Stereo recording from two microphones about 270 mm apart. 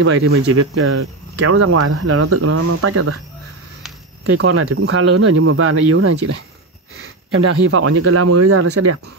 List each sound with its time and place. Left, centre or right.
0.0 s speech: right
4.4 s speech: right
7.3 s speech: right